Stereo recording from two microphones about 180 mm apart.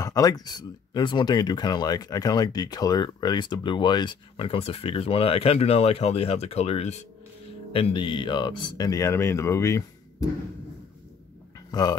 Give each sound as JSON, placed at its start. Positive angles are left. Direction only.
{"t": 0.0, "sound": "speech", "side_deg": 20}
{"t": 11.7, "sound": "speech", "side_deg": 20}